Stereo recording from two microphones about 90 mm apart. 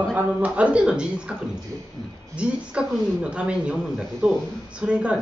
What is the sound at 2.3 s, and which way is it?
Speech, 10° right (ahead or behind).